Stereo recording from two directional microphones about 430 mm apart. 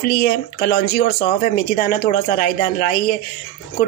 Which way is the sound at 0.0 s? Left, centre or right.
Centre.